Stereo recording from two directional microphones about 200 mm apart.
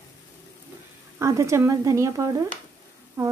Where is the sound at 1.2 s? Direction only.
15° right (ahead or behind).